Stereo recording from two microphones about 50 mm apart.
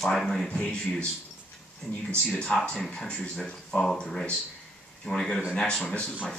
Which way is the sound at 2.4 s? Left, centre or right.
Centre.